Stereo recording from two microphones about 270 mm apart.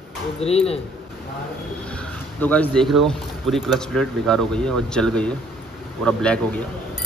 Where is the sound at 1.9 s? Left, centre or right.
Centre.